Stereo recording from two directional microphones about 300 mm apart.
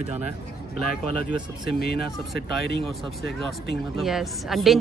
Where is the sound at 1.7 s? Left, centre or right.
Left.